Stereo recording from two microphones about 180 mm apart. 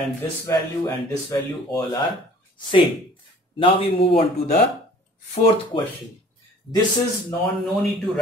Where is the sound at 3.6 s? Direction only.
30° left (ahead or behind).